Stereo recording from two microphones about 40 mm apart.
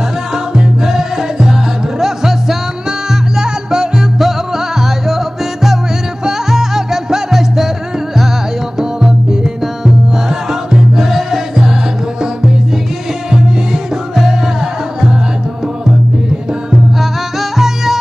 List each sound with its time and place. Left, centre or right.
0.6 s music: centre
8.7 s music: centre
17.0 s music: centre